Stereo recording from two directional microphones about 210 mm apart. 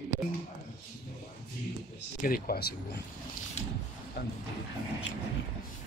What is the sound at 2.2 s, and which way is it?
Speech, 45° left (ahead or behind).